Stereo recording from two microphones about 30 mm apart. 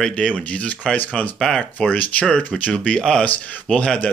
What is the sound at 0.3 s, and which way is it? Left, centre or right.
Speech, left.